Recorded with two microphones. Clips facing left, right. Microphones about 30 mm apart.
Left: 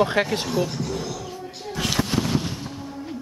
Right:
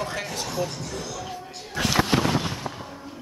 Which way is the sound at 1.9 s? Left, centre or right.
Right.